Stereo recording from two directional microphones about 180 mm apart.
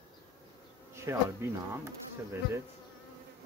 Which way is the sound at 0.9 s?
15° right (ahead or behind).